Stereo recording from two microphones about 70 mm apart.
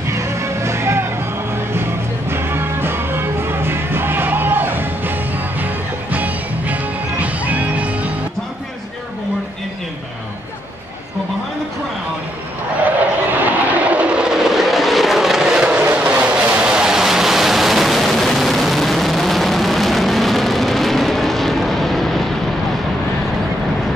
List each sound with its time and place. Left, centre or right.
0.1 s music: right
6.1 s music: right
12.8 s train: right
15.8 s waves: centre